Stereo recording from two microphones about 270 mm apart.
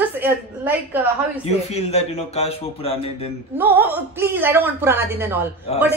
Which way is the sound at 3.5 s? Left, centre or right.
Centre.